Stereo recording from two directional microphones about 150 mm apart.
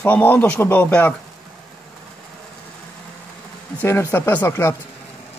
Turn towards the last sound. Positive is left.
turn(degrees=15)  # may be behind; listen again after turning